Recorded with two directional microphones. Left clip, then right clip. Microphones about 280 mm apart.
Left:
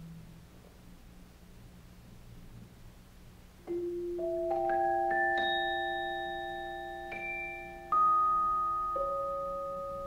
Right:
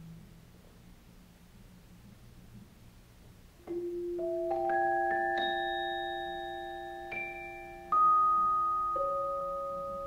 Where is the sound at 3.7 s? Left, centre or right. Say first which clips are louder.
Left 1 dB; left.